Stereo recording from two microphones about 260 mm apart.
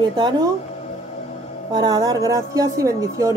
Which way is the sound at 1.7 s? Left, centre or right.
Centre.